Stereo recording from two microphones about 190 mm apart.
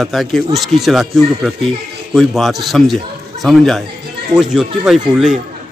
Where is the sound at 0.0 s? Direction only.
Centre (ahead or behind).